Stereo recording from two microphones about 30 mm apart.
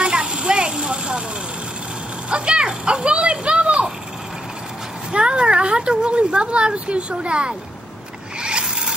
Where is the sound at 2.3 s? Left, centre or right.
Right.